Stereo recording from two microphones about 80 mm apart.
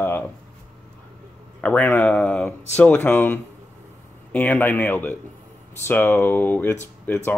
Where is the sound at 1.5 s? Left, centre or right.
Centre.